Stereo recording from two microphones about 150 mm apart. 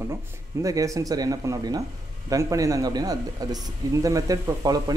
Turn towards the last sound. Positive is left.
turn(degrees=-25)  # may be behind; listen again after turning